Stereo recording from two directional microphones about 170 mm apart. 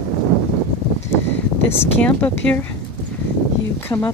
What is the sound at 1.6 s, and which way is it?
Speech, 10° left (ahead or behind).